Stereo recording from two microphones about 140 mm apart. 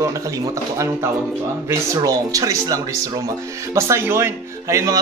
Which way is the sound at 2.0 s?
25° right (ahead or behind).